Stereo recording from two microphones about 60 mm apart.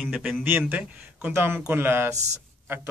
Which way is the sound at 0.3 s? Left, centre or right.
Right.